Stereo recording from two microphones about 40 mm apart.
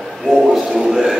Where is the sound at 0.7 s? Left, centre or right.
Centre.